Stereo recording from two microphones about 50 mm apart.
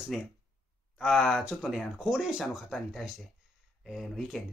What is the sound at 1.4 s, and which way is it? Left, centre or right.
Speech, centre.